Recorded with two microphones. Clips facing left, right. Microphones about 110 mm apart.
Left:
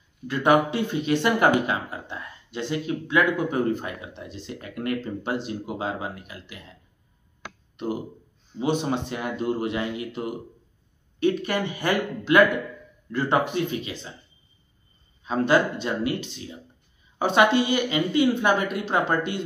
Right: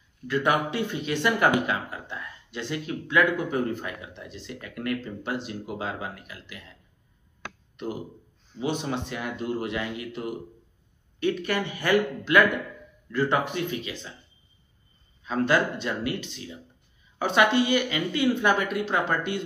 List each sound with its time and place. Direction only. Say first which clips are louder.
0.3 s speech: left 4 dB; 25° left (ahead or behind)
8.5 s speech: left 4 dB; 20° left (ahead or behind)
15.2 s speech: left 3 dB; 25° left (ahead or behind)